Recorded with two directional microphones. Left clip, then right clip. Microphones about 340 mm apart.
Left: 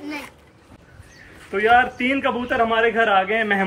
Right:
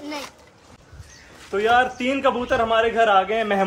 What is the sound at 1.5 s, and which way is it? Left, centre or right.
A man's voice, centre.